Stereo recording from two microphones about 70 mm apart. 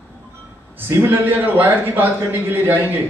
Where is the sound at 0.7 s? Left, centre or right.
Right.